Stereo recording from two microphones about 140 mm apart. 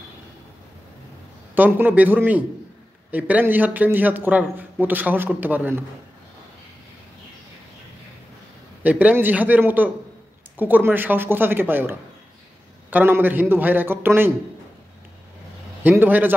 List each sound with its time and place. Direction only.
1.5 s a man's voice: 15° right (ahead or behind)
8.8 s a man's voice: 10° right (ahead or behind)
15.8 s a man's voice: 15° right (ahead or behind)